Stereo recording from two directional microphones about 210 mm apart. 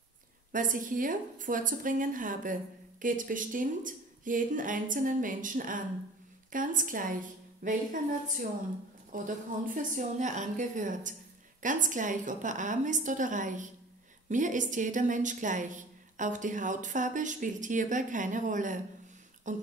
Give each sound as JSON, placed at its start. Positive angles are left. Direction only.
{"t": 0.5, "sound": "a woman's voice", "side_deg": -40}